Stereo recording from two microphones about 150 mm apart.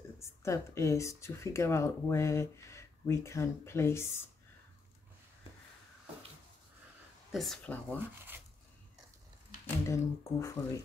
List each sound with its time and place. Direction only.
0.2 s speech: 20° left (ahead or behind)
7.3 s speech: 5° left (ahead or behind)
9.8 s speech: 20° left (ahead or behind)